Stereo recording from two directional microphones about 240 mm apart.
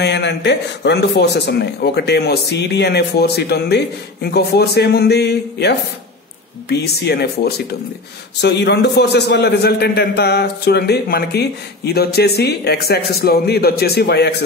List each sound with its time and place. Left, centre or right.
0.0 s a man's voice: left